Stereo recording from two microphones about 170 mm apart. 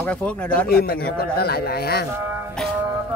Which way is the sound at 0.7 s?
65° left (ahead or behind).